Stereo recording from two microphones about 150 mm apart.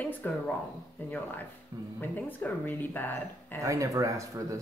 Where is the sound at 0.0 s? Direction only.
10° left (ahead or behind).